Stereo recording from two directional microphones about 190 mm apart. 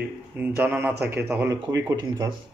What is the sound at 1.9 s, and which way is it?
Speech, 20° right (ahead or behind).